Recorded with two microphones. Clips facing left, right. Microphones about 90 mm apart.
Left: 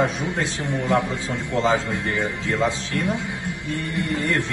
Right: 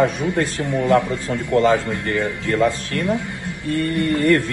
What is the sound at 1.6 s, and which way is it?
Mantra, 60° right (ahead or behind).